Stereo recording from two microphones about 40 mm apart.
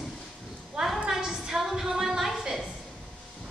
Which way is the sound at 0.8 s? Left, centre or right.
Centre.